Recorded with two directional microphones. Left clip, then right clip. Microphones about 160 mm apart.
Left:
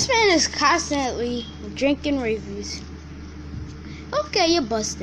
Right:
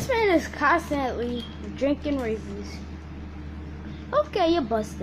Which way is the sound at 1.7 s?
15° left (ahead or behind).